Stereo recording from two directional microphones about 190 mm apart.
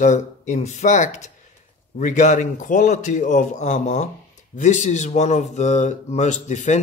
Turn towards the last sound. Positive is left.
turn(degrees=40)  # may be behind; listen again after turning